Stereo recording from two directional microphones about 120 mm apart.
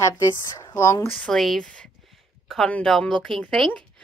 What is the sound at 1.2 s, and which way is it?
A woman's voice, 5° left (ahead or behind).